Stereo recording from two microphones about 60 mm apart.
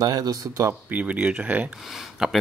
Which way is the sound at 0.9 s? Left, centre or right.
Right.